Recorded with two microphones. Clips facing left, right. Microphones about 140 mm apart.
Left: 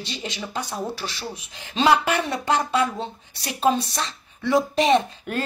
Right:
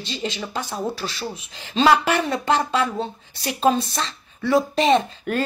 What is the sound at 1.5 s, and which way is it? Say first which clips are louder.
Speech: right 2 dB; 10° left (ahead or behind).